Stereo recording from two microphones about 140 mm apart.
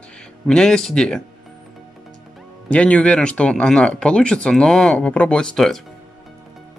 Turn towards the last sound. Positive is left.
turn(degrees=5)  # may be behind; listen again after turning